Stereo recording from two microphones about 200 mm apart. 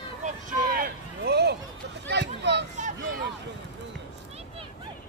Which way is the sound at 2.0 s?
60° right (ahead or behind).